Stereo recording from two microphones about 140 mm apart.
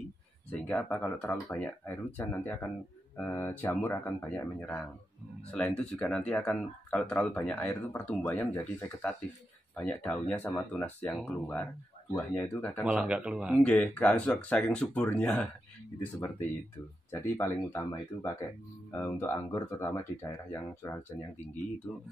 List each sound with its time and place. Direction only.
0.5 s speech: 10° left (ahead or behind)
12.8 s speech: 5° right (ahead or behind)
13.6 s speech: 10° left (ahead or behind)
17.1 s speech: 20° left (ahead or behind)
21.9 s speech: centre (ahead or behind)